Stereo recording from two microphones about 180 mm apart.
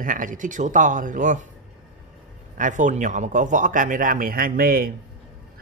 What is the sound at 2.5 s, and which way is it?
Speech, 45° right (ahead or behind).